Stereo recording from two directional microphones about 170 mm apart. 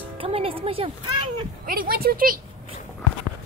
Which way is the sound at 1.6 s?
55° right (ahead or behind).